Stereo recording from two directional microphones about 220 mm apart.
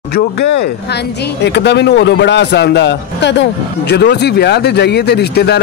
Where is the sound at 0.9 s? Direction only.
50° left (ahead or behind).